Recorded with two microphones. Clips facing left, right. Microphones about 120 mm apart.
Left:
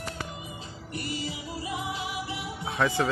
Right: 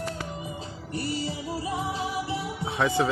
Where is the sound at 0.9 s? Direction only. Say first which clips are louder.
Right 4 dB; 35° right (ahead or behind).